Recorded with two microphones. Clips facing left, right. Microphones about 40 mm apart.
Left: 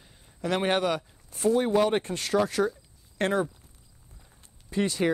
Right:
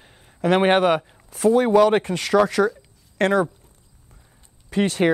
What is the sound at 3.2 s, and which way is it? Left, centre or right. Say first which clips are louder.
Speech: right 7 dB; right.